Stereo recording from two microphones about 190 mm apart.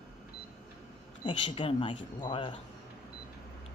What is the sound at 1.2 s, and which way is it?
Speech, 25° left (ahead or behind).